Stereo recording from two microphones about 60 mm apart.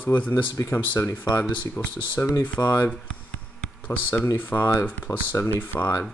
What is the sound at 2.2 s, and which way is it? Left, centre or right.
Speech, left.